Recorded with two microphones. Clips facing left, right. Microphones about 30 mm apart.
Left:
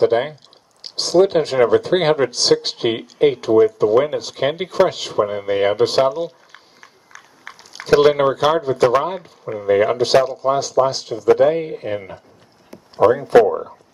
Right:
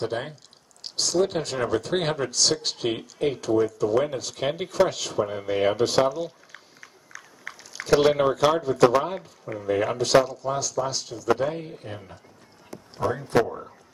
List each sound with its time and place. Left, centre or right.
0.0 s speech: left
7.1 s a sound: centre
7.7 s speech: left
13.0 s speech: left
13.5 s speech: left